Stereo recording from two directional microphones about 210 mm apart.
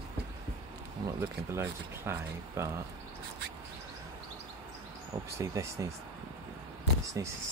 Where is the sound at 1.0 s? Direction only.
10° right (ahead or behind).